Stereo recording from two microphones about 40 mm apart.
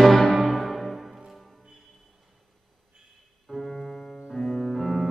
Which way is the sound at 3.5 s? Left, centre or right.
Centre.